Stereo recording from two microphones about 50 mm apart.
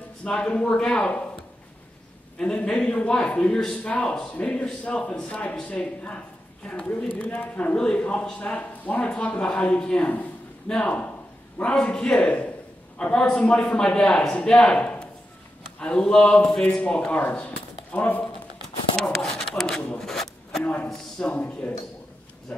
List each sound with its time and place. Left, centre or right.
0.2 s a man's voice: centre
2.3 s a man's voice: left
19.1 s a man's voice: centre
20.0 s a sound: centre
20.6 s a man's voice: left